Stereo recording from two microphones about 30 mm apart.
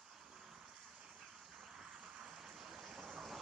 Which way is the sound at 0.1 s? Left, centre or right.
Centre.